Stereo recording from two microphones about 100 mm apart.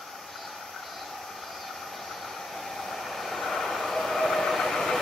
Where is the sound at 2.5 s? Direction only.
Centre (ahead or behind).